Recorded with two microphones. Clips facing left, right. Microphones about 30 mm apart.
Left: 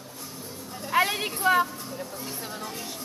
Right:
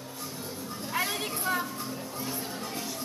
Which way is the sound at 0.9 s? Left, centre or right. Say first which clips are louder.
Left 7 dB; left.